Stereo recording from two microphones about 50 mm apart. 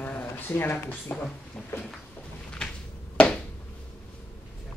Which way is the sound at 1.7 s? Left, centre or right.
Left.